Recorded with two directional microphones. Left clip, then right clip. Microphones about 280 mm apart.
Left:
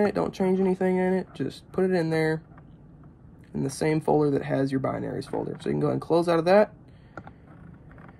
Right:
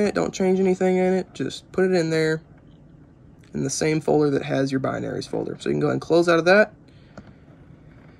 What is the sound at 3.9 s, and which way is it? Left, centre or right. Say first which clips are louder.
Speech: right 3 dB; centre.